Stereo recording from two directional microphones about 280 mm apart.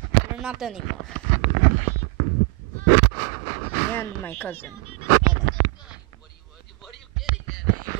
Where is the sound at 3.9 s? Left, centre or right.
Centre.